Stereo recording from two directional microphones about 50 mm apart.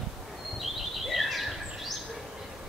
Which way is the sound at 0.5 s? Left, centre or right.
Centre.